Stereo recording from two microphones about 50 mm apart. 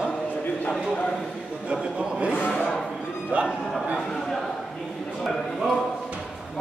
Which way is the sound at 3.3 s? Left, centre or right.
Right.